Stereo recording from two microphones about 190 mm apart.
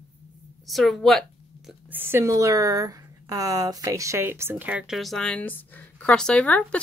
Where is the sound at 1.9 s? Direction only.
10° right (ahead or behind).